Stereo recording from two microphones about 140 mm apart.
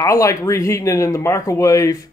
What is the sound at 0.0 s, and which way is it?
Speech, 25° left (ahead or behind).